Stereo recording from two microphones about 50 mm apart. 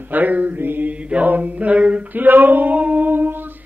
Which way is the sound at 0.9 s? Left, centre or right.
Right.